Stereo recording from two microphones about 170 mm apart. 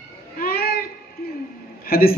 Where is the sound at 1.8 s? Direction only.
60° left (ahead or behind).